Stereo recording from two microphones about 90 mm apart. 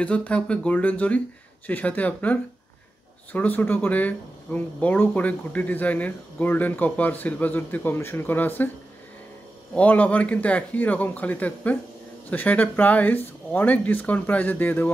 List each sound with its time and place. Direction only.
0.0 s speech: 15° left (ahead or behind)
3.3 s speech: 20° left (ahead or behind)
9.8 s speech: 15° left (ahead or behind)